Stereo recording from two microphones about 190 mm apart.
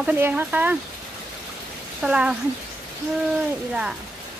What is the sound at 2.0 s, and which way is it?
Speech, 5° right (ahead or behind).